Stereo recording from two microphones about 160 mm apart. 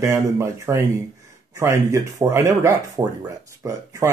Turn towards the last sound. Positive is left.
turn(degrees=-20)  # may be behind; listen again after turning